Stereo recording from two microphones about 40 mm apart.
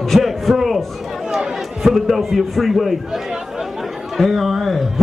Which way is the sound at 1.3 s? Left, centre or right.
Centre.